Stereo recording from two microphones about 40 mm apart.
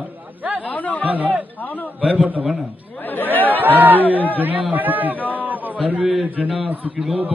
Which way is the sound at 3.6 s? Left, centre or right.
Right.